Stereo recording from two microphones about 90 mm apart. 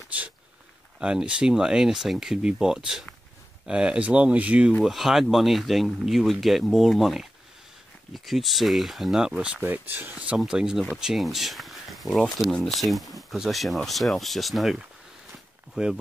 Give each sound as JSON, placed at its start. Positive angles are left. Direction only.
{"t": 0.1, "sound": "speech", "side_deg": -15}
{"t": 4.8, "sound": "speech", "side_deg": -5}